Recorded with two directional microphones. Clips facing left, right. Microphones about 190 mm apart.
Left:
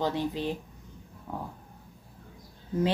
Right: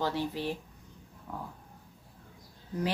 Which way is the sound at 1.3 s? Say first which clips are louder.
Left 4 dB; 25° left (ahead or behind).